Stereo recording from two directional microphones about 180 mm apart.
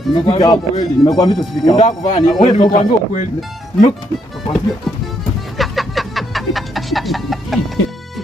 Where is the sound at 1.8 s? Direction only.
40° left (ahead or behind).